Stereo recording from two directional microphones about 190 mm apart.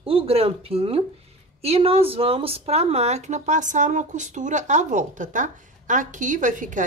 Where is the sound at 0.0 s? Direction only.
30° right (ahead or behind).